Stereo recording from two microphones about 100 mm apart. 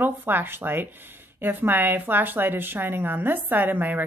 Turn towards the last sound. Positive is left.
turn(degrees=-20)  # may be behind; listen again after turning